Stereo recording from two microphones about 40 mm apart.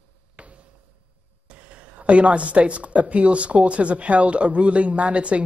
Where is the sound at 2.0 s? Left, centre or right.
Right.